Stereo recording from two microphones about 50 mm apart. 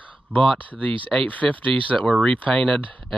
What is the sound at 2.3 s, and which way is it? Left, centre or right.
Speech, left.